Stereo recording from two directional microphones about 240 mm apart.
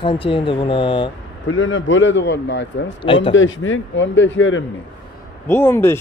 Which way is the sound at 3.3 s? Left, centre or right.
Left.